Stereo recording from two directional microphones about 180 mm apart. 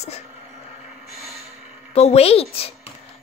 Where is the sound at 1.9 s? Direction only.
35° left (ahead or behind).